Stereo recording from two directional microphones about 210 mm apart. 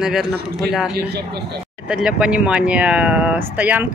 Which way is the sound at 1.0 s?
50° right (ahead or behind).